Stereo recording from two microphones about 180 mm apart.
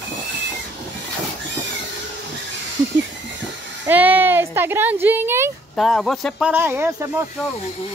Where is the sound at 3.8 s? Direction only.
10° right (ahead or behind).